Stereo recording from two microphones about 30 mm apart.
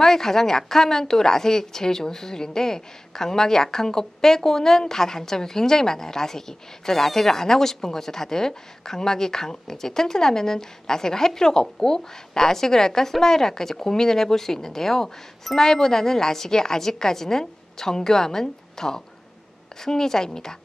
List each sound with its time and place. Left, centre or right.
0.0 s a woman's voice: centre